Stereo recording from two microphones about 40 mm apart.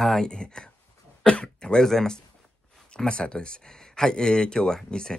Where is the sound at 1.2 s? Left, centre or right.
Left.